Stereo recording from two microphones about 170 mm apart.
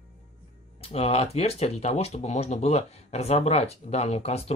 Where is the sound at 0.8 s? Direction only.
35° left (ahead or behind).